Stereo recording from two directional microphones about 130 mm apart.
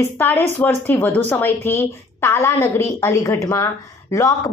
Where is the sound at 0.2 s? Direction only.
15° left (ahead or behind).